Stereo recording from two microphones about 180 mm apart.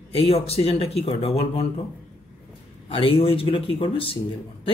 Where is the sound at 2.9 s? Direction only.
30° left (ahead or behind).